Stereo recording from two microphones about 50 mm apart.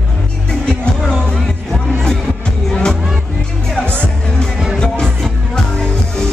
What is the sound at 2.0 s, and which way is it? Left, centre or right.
Music, centre.